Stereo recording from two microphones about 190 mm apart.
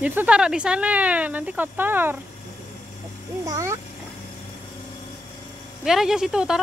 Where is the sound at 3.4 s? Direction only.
15° right (ahead or behind).